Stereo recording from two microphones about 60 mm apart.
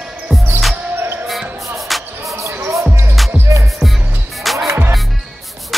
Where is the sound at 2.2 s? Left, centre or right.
Right.